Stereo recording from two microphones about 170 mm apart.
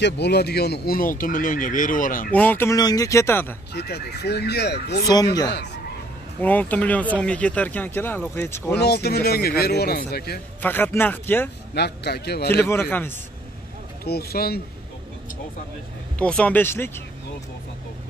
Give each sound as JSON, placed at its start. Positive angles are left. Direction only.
{"t": 0.0, "sound": "speech", "side_deg": 75}
{"t": 2.3, "sound": "speech", "side_deg": 10}
{"t": 3.7, "sound": "speech", "side_deg": 75}
{"t": 5.0, "sound": "speech", "side_deg": 20}
{"t": 6.4, "sound": "speech", "side_deg": 10}
{"t": 8.7, "sound": "speech", "side_deg": 70}
{"t": 10.6, "sound": "speech", "side_deg": 10}
{"t": 11.7, "sound": "speech", "side_deg": 75}
{"t": 12.6, "sound": "speech", "side_deg": 10}
{"t": 14.0, "sound": "speech", "side_deg": 65}
{"t": 16.2, "sound": "speech", "side_deg": 5}